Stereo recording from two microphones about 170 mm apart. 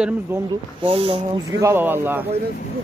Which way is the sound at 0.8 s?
35° right (ahead or behind).